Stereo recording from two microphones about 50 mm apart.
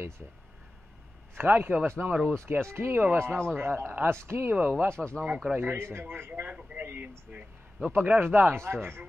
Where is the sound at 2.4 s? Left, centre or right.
Right.